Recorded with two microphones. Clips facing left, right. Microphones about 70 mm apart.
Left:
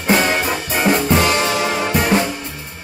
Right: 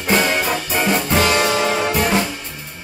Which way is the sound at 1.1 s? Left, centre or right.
Left.